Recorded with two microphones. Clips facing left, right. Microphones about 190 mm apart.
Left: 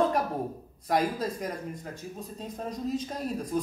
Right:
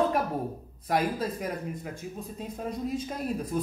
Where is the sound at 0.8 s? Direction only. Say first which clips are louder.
Even; 5° right (ahead or behind).